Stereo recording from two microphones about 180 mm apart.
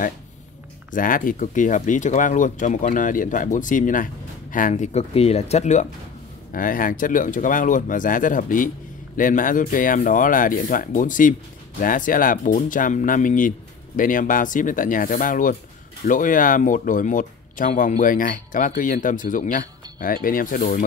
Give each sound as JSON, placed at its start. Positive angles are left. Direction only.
{"t": 0.9, "sound": "speech", "side_deg": 50}